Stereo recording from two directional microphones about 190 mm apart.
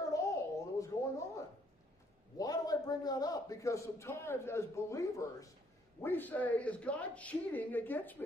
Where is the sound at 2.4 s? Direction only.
20° left (ahead or behind).